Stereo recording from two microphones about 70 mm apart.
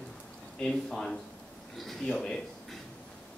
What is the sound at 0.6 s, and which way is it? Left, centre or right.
Speech, centre.